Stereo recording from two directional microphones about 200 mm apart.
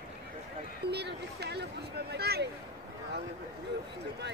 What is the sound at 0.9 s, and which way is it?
Speech, 55° right (ahead or behind).